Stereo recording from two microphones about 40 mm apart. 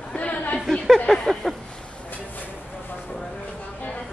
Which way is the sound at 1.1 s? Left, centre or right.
Centre.